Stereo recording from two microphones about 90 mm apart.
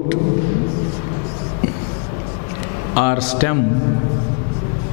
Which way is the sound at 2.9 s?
10° left (ahead or behind).